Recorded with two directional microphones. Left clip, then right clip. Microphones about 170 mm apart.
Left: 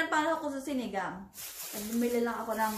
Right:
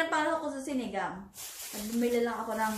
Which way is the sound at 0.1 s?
15° left (ahead or behind).